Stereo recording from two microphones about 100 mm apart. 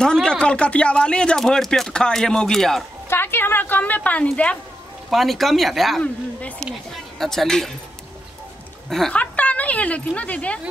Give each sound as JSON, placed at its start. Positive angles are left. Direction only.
{"t": 0.0, "sound": "speech", "side_deg": 10}
{"t": 3.1, "sound": "a woman's voice", "side_deg": 25}
{"t": 5.1, "sound": "speech", "side_deg": 0}
{"t": 6.0, "sound": "speech", "side_deg": 10}
{"t": 8.8, "sound": "speech", "side_deg": 0}
{"t": 9.1, "sound": "speech", "side_deg": 15}